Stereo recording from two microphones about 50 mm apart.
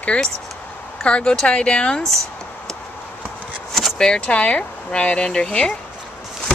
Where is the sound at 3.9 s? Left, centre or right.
Centre.